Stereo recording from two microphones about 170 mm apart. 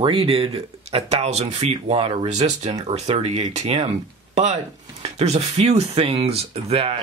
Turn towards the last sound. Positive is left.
turn(degrees=-35)  # may be behind; listen again after turning